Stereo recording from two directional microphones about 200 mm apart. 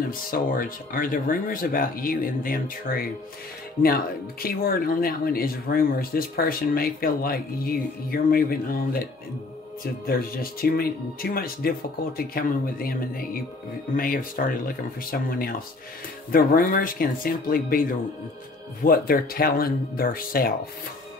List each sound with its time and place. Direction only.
0.3 s speech: 45° left (ahead or behind)
4.4 s speech: 45° left (ahead or behind)
10.0 s speech: 50° left (ahead or behind)
18.9 s speech: 50° left (ahead or behind)